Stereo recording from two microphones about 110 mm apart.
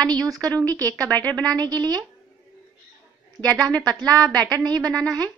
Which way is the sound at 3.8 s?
35° right (ahead or behind).